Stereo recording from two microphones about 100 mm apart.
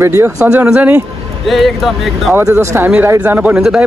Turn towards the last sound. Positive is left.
turn(degrees=-5)  # may be behind; listen again after turning